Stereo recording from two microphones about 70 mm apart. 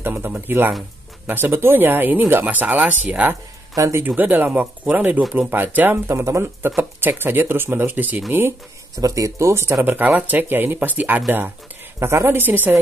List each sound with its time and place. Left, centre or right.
0.0 s speech: right
6.0 s speech: right
9.0 s speech: right
10.0 s speech: right
12.0 s speech: right